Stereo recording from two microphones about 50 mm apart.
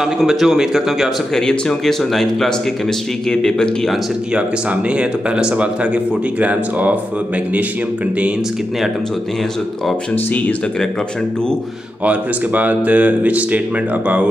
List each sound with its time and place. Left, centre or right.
0.0 s speech: centre
1.3 s speech: centre
4.3 s speech: right
10.1 s speech: left
12.0 s speech: right